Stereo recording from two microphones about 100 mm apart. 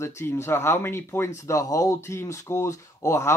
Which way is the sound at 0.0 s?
25° left (ahead or behind).